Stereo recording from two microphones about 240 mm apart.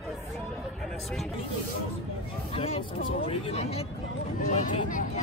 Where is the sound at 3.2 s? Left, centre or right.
Left.